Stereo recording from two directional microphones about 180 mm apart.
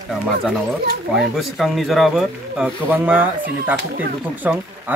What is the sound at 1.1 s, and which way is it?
Speech, centre (ahead or behind).